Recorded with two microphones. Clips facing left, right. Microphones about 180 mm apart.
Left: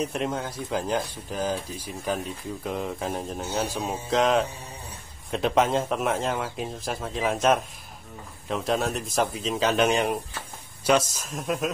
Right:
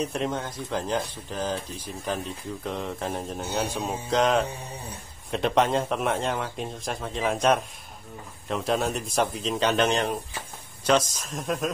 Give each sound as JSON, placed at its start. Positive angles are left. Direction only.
{"t": 0.0, "sound": "a man's voice", "side_deg": 5}